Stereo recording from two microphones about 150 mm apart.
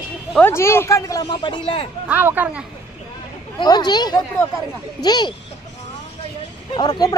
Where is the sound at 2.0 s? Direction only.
10° right (ahead or behind).